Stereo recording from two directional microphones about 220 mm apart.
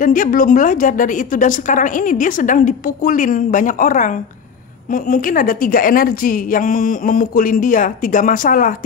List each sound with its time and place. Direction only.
0.0 s a woman's voice: 40° left (ahead or behind)